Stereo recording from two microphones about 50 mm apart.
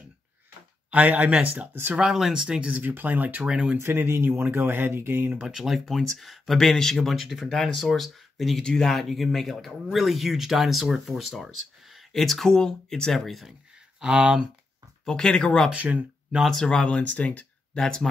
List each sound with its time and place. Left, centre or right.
0.8 s speech: right
1.7 s speech: right
2.0 s speech: centre
2.6 s speech: right
3.4 s speech: centre
3.7 s speech: right
5.5 s speech: centre
13.9 s speech: centre
15.0 s speech: centre
15.7 s speech: right
16.4 s speech: centre; by 17.5 s left
17.7 s speech: centre